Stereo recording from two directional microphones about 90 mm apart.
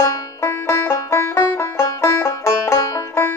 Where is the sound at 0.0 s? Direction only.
30° left (ahead or behind).